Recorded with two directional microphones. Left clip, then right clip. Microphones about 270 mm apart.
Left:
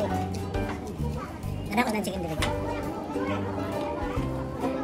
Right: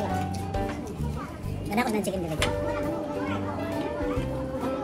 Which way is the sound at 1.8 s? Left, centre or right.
Centre.